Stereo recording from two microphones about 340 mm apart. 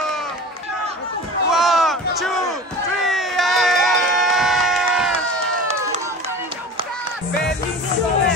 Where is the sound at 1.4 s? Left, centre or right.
Centre.